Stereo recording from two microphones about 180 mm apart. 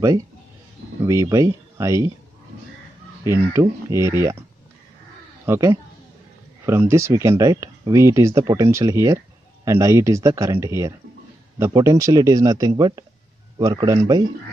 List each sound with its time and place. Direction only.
1.0 s speech: 20° right (ahead or behind)
3.5 s speech: 15° right (ahead or behind)
5.5 s speech: 15° right (ahead or behind)